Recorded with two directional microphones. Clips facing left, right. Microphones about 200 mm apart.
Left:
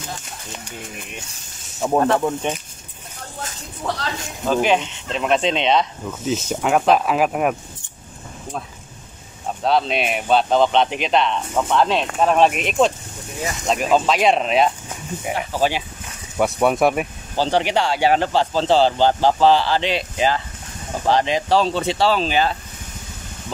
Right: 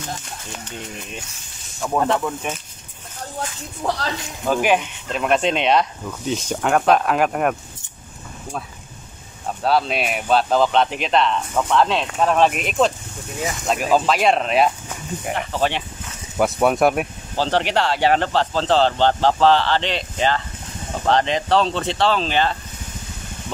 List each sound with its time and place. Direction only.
1.8 s speech: 25° left (ahead or behind)
4.5 s speech: 10° right (ahead or behind)
9.6 s speech: 5° right (ahead or behind)